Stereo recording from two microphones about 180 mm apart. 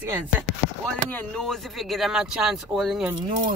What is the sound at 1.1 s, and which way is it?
Speech, 5° left (ahead or behind).